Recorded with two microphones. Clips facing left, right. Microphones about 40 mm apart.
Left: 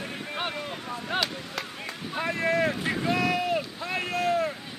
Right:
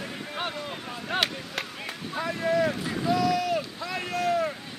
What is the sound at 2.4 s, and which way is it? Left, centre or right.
Boat, left.